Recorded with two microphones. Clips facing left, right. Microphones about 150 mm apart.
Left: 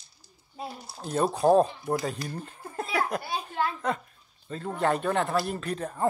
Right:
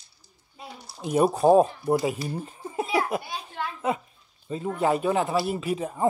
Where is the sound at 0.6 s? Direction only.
30° left (ahead or behind).